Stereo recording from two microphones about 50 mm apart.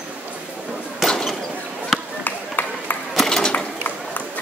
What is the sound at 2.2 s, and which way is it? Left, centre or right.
Run, left.